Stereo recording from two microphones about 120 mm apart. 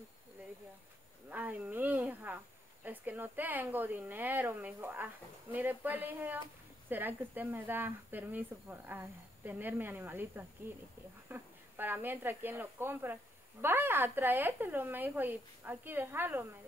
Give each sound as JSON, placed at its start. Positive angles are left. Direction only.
{"t": 1.3, "sound": "speech", "side_deg": -15}